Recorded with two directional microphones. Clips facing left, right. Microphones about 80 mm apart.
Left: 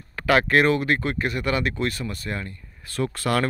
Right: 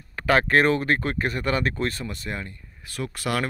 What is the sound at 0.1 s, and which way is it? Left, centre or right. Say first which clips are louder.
Speech: left 1 dB; right.